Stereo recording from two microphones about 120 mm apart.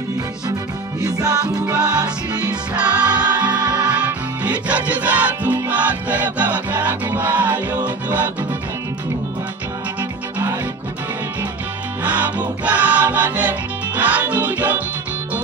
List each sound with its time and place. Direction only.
1.0 s music: 30° right (ahead or behind)
2.4 s music: 10° right (ahead or behind)
3.3 s music: 35° right (ahead or behind)
4.0 s music: 10° right (ahead or behind)
12.0 s music: 10° right (ahead or behind)